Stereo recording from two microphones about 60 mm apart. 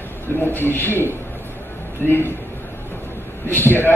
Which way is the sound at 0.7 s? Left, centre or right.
Left.